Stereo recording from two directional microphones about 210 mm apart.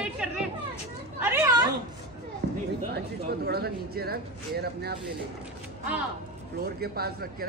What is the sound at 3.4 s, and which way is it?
Speech, 50° right (ahead or behind).